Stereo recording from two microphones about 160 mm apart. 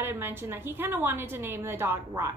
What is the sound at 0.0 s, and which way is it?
A woman's voice, 15° right (ahead or behind).